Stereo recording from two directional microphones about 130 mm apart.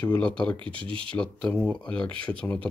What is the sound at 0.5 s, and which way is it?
Speech, 40° right (ahead or behind).